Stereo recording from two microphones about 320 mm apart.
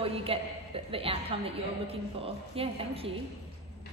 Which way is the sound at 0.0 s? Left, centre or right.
Centre.